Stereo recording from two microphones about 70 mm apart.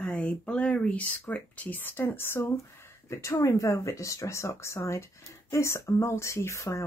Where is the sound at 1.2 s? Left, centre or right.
Left.